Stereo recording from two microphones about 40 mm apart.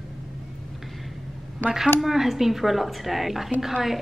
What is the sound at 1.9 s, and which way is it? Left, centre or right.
A woman's voice, centre.